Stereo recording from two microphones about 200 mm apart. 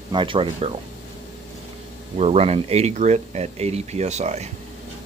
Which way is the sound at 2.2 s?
30° right (ahead or behind).